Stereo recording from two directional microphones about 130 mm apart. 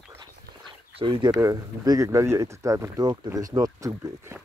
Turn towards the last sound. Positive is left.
turn(degrees=-20)  # may be behind; listen again after turning